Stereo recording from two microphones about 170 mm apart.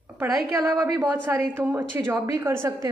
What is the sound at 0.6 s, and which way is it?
A woman's voice, 10° right (ahead or behind).